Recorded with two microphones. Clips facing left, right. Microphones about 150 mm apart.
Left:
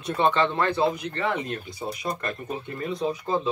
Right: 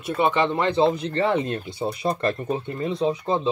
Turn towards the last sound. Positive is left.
turn(degrees=-25)  # may be behind; listen again after turning